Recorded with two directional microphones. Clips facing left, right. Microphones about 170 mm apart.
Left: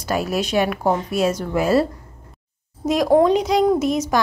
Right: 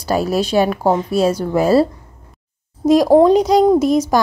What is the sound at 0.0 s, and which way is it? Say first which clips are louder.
A woman's voice: right 5 dB; 35° right (ahead or behind).